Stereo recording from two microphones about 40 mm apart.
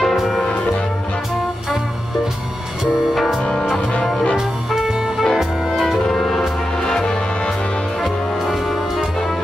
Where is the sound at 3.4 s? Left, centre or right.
Left.